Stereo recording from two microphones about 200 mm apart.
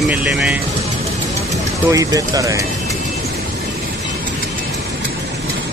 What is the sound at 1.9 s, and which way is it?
Speech, 15° right (ahead or behind).